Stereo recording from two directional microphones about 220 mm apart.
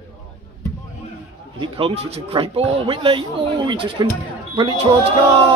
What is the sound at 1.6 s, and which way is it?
Speech, 25° right (ahead or behind).